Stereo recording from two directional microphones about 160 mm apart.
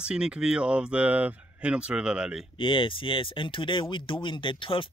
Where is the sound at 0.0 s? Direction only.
5° right (ahead or behind).